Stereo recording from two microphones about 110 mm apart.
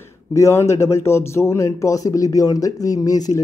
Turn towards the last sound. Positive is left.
turn(degrees=35)  # may be behind; listen again after turning